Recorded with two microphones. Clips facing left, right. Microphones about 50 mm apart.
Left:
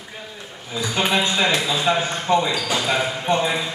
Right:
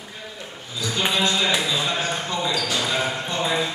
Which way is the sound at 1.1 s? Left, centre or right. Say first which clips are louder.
Left 2 dB; left.